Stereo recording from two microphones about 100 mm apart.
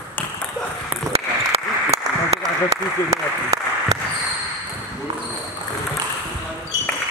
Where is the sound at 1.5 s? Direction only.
90° right.